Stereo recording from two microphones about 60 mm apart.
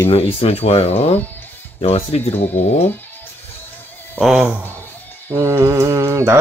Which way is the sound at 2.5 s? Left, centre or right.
Left.